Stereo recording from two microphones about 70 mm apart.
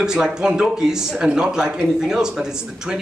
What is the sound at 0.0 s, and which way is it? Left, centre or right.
Speech, centre.